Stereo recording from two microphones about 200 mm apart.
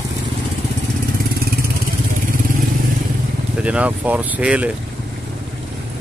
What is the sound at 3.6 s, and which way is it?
Speech, 5° right (ahead or behind).